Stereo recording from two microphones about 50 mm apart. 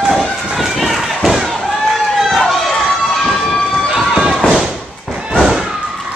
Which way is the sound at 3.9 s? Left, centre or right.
Centre.